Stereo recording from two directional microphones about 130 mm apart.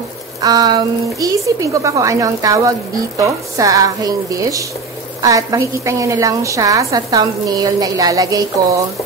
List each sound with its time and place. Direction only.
0.4 s a woman's voice: 30° right (ahead or behind)